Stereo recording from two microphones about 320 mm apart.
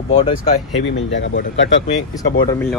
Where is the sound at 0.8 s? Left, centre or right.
Left.